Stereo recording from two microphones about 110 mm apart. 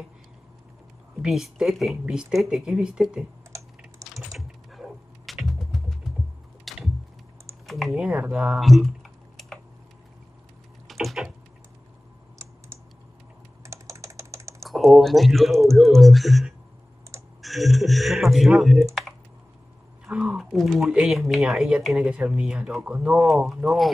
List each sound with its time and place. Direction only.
1.2 s speech: 5° right (ahead or behind)
4.0 s typing: 30° right (ahead or behind)
4.4 s a sound: centre (ahead or behind)
7.6 s typing: centre (ahead or behind)
10.9 s a sound: centre (ahead or behind)
13.7 s typing: 30° right (ahead or behind)
14.6 s speech: centre (ahead or behind)
20.1 s speech: 10° right (ahead or behind)